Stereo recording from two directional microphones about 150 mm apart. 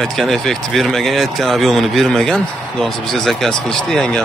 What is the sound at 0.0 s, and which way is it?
A man's voice, centre (ahead or behind).